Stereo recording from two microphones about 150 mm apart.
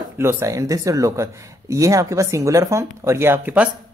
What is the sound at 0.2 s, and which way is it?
Speech, 20° right (ahead or behind).